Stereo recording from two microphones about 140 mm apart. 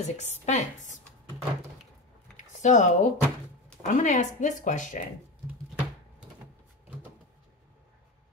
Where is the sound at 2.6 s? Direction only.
60° left (ahead or behind).